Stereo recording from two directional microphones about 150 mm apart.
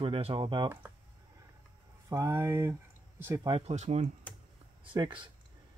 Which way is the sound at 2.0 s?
20° right (ahead or behind).